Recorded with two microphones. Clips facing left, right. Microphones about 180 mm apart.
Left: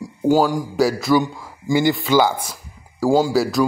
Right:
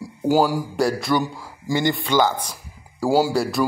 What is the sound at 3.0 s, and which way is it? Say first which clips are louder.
Speech: left 2 dB; centre (ahead or behind).